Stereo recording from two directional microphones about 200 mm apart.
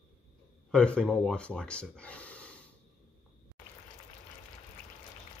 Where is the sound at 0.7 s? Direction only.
5° left (ahead or behind).